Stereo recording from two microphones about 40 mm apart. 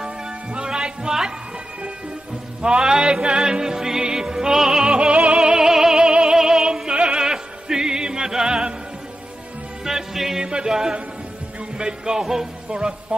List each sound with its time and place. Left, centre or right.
0.5 s music: right
2.6 s music: right
5.1 s music: right
5.4 s music: centre
9.8 s music: centre
10.5 s speech: centre